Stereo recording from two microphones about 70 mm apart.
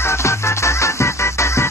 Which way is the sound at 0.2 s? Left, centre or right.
Left.